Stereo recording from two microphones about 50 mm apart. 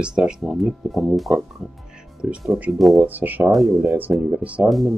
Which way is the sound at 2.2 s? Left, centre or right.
Right.